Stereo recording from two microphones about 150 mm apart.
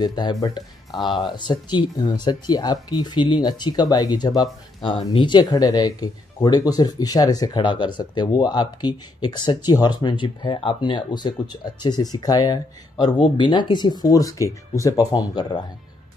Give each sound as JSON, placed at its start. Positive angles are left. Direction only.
{"t": 0.0, "sound": "speech", "side_deg": 25}